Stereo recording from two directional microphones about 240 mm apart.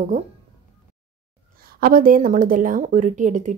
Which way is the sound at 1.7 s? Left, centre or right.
Right.